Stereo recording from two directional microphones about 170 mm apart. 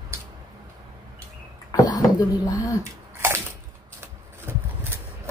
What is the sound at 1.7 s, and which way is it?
Beatboxing, 20° left (ahead or behind).